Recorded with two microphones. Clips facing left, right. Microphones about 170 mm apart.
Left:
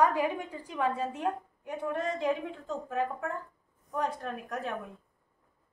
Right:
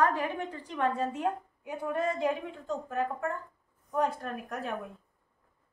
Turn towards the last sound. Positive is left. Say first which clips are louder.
# even
turn(degrees=0)  # may be behind; listen again after turning